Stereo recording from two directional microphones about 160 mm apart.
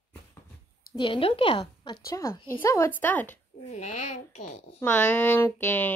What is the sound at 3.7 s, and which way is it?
Speech, 45° left (ahead or behind).